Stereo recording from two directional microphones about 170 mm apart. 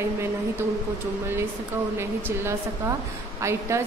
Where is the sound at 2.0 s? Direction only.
15° right (ahead or behind).